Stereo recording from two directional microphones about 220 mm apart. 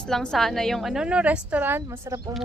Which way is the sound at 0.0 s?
Centre (ahead or behind).